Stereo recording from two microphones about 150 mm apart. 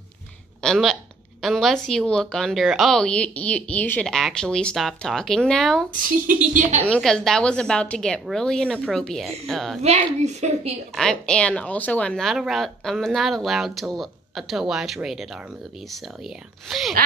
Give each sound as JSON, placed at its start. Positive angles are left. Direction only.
{"t": 0.6, "sound": "a woman's voice", "side_deg": 5}
{"t": 6.0, "sound": "a woman's voice", "side_deg": -65}
{"t": 6.9, "sound": "a woman's voice", "side_deg": 5}
{"t": 9.8, "sound": "a woman's voice", "side_deg": -50}
{"t": 11.0, "sound": "a woman's voice", "side_deg": 5}
{"t": 16.6, "sound": "a woman's voice", "side_deg": 0}